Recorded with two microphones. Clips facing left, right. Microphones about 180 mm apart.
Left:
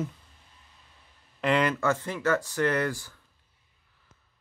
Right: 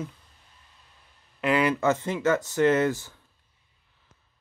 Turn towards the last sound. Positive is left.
turn(degrees=-20)  # may be behind; listen again after turning